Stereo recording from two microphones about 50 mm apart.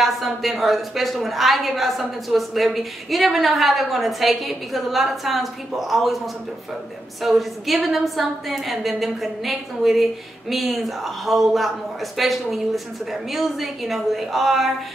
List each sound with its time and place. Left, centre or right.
0.0 s a woman's voice: centre